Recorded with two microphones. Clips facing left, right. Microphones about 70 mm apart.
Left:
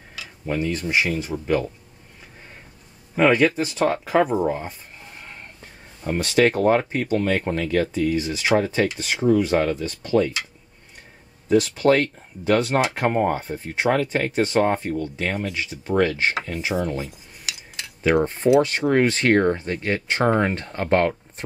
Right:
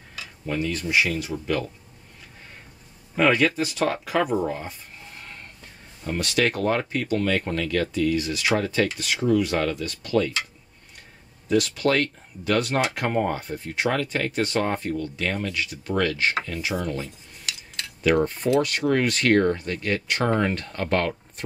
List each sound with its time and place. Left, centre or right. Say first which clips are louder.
0.5 s speech: left 2 dB; left
1.3 s speech: left 4 dB; centre
3.2 s speech: left 3 dB; centre
4.4 s speech: left 4 dB; centre
11.4 s speech: left 4 dB; left
17.5 s cutlery: even; centre
18.2 s speech: left 4 dB; left